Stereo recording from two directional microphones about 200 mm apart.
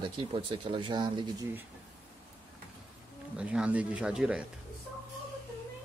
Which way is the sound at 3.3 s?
5° right (ahead or behind).